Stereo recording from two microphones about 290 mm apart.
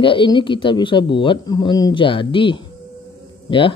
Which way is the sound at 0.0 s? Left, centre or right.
Centre.